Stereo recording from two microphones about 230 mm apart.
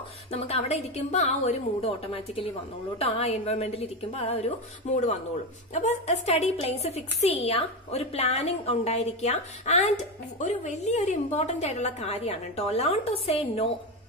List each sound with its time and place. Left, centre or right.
0.3 s a woman's voice: left